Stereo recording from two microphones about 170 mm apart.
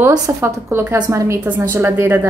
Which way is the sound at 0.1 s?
15° right (ahead or behind).